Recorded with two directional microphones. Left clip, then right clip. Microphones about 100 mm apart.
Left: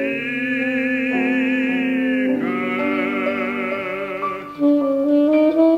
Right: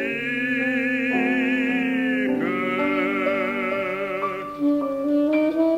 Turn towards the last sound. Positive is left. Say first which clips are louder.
# left 6 dB
turn(degrees=35)  # may be behind; listen again after turning